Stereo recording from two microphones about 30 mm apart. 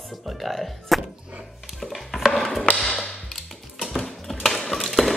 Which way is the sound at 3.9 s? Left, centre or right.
Centre.